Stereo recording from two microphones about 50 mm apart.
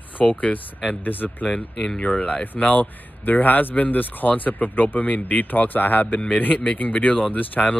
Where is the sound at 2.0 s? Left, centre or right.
Left.